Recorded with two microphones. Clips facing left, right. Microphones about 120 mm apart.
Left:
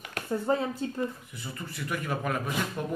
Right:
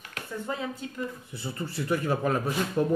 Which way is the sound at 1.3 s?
30° right (ahead or behind).